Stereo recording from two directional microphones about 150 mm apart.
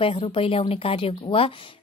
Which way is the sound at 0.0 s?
40° left (ahead or behind).